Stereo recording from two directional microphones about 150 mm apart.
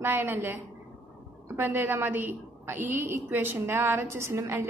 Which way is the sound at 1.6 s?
15° right (ahead or behind).